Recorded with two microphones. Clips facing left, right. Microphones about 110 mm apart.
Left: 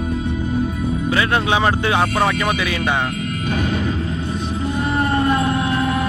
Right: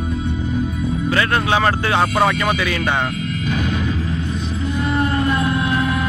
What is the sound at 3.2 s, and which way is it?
Music, 45° left (ahead or behind).